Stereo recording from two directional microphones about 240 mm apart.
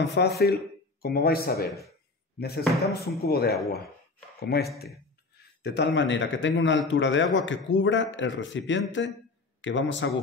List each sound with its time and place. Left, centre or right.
0.1 s a man's voice: left